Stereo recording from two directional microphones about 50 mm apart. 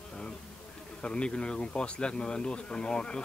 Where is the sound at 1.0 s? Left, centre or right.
Centre.